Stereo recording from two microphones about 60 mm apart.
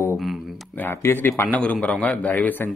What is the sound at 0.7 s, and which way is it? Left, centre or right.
Speech, left.